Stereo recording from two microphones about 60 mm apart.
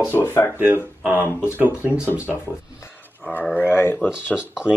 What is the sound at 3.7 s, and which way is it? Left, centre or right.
Speech, left.